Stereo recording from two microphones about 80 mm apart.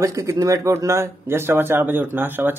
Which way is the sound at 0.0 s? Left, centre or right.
Right.